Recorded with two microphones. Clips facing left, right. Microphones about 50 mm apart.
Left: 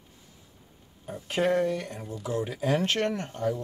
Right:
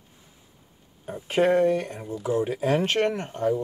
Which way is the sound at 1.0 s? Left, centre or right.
Right.